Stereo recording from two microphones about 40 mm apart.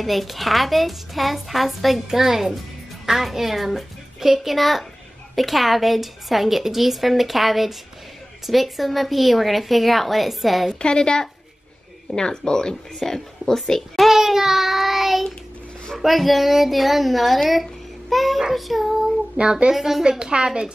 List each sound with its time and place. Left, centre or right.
0.0 s a woman's voice: centre
10.8 s a woman's voice: centre
14.0 s child singing: centre
16.0 s a woman's voice: centre
19.3 s speech: right
19.7 s a woman's voice: centre